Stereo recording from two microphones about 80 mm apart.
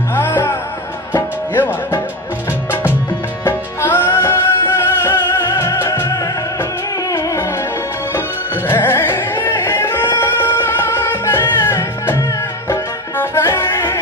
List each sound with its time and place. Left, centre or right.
0.1 s music: left
3.4 s music: left
8.6 s music: left